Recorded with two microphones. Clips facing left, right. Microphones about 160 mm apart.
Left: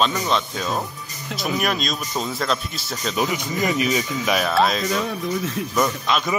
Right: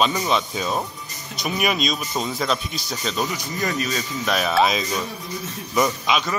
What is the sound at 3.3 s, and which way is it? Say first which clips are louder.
Speech: left 3 dB; 20° left (ahead or behind).